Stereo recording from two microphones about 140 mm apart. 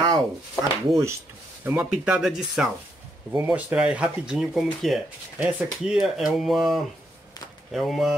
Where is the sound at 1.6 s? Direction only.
10° right (ahead or behind).